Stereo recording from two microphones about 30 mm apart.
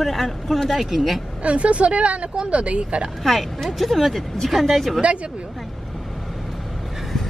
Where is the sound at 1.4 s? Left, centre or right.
Right.